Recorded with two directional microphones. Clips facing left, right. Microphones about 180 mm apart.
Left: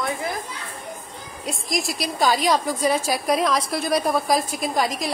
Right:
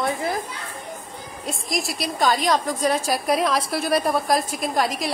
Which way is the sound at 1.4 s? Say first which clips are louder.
Left 1 dB; centre (ahead or behind).